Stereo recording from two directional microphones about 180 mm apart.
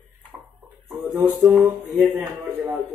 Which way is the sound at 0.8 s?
10° right (ahead or behind).